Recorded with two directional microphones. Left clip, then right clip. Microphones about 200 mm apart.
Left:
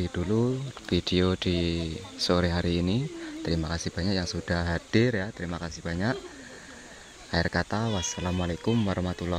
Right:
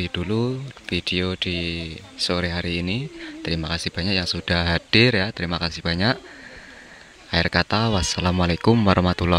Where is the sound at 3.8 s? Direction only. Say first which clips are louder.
Right 6 dB; 25° right (ahead or behind).